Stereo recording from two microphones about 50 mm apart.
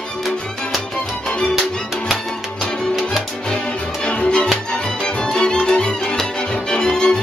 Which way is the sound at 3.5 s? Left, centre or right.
Centre.